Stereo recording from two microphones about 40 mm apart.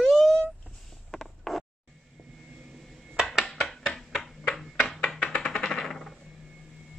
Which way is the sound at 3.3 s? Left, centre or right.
Centre.